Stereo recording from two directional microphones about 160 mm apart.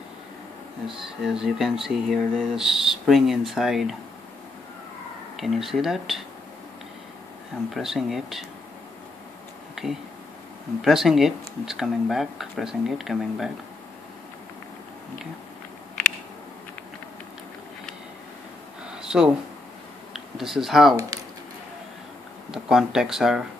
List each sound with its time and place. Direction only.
0.8 s speech: 5° right (ahead or behind)
5.4 s speech: centre (ahead or behind)
7.7 s speech: centre (ahead or behind)
9.8 s a sound: centre (ahead or behind)
10.8 s speech: centre (ahead or behind)
18.9 s a sound: 5° right (ahead or behind)
20.1 s speech: centre (ahead or behind)
21.1 s a sound: 20° right (ahead or behind)
22.5 s speech: 5° right (ahead or behind)